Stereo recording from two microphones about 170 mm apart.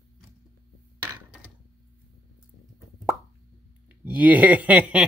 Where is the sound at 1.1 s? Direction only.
10° right (ahead or behind).